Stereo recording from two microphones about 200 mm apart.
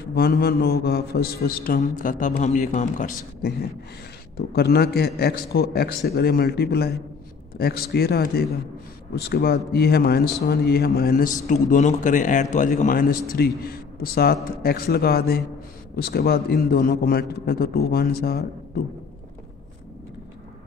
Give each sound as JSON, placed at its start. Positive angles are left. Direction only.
{"t": 0.1, "sound": "a man's voice", "side_deg": 50}
{"t": 4.4, "sound": "a man's voice", "side_deg": 55}